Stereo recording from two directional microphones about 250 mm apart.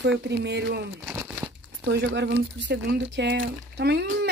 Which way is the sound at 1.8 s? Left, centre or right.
Right.